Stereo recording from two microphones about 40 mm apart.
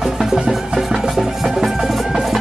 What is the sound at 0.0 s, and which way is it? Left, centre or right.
Music, centre.